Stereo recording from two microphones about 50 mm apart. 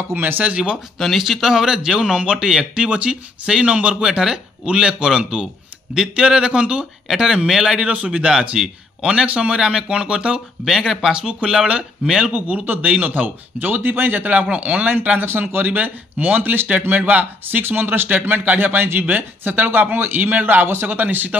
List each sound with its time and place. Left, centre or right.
0.1 s speech: right
0.4 s a man's voice: right
0.9 s a man's voice: centre; by 3.9 s right
3.9 s speech: centre
4.6 s speech: centre
7.9 s a man's voice: right
10.6 s speech: centre
12.3 s speech: right
15.1 s speech: right